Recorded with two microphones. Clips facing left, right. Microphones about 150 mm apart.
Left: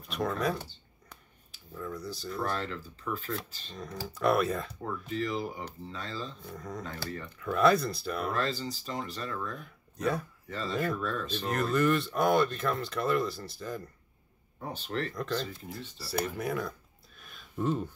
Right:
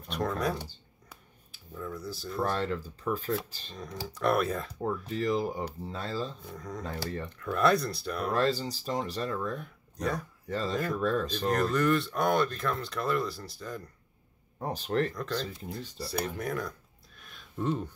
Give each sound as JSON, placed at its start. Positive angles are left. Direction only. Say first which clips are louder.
{"t": 0.1, "sound": "speech", "louder": "even", "side_deg": 0}
{"t": 1.0, "sound": "a sound", "louder": "even", "side_deg": 0}
{"t": 2.6, "sound": "speech", "louder": "right 5 dB", "side_deg": -40}
{"t": 3.7, "sound": "speech", "louder": "even", "side_deg": 0}
{"t": 4.8, "sound": "speech", "louder": "right 5 dB", "side_deg": -35}
{"t": 6.4, "sound": "speech", "louder": "right 1 dB", "side_deg": 0}
{"t": 8.3, "sound": "speech", "louder": "right 7 dB", "side_deg": -40}
{"t": 9.6, "sound": "speech", "louder": "even", "side_deg": 0}
{"t": 11.0, "sound": "speech", "louder": "right 5 dB", "side_deg": -40}
{"t": 11.4, "sound": "speech", "louder": "even", "side_deg": 0}
{"t": 14.6, "sound": "speech", "louder": "right 5 dB", "side_deg": -40}
{"t": 15.1, "sound": "speech", "louder": "even", "side_deg": 5}
{"t": 16.0, "sound": "a sound", "louder": "left 1 dB", "side_deg": 5}